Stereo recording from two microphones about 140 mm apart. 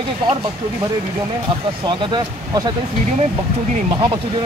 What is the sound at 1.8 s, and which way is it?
Speech, 30° right (ahead or behind).